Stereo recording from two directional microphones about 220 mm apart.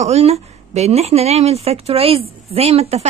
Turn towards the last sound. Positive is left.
turn(degrees=-30)  # may be behind; listen again after turning